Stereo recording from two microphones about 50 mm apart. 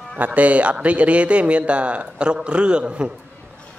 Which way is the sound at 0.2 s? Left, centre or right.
Right.